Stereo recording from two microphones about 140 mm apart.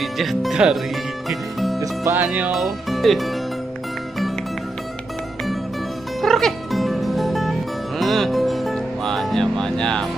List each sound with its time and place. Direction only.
0.0 s speech: centre (ahead or behind)
1.3 s music: centre (ahead or behind)
1.8 s music: 20° right (ahead or behind)
2.2 s speech: 10° right (ahead or behind)
6.2 s music: centre (ahead or behind)